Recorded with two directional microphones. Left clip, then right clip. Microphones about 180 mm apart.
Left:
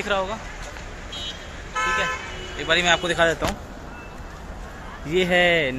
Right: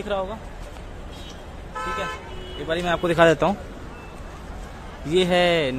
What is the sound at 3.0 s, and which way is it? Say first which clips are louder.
Speech: right 3 dB; 65° right (ahead or behind).